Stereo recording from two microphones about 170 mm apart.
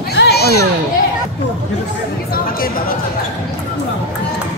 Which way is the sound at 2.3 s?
60° left (ahead or behind).